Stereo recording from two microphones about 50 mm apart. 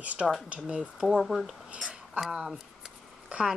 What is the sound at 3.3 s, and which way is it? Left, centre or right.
Speech, right.